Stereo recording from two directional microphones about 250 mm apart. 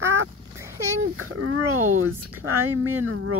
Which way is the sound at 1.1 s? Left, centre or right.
Right.